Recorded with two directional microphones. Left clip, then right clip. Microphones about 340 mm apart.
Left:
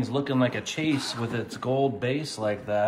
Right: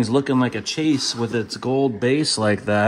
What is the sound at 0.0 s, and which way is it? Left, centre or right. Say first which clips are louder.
Speech: right 6 dB; centre.